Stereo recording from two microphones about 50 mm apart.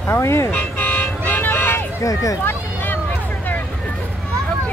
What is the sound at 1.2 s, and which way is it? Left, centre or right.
Vehicle, left.